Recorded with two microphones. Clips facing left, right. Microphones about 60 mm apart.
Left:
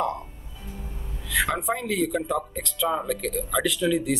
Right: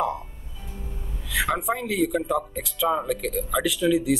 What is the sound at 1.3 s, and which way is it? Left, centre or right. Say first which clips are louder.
Speech: even; centre.